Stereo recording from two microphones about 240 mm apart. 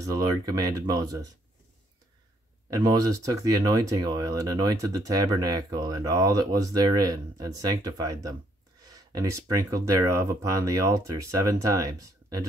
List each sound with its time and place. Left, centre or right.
0.0 s speech: centre
2.7 s speech: centre